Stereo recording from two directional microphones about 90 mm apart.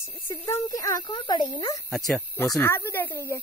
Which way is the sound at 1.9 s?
5° left (ahead or behind).